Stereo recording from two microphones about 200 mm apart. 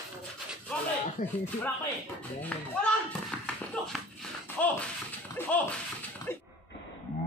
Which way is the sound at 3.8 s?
5° left (ahead or behind).